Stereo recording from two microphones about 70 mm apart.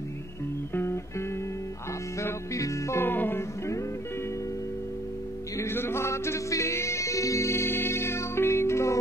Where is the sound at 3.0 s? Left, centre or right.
Left.